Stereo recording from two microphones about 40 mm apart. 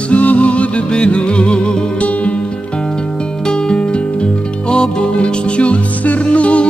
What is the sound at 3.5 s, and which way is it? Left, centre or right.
Music, left.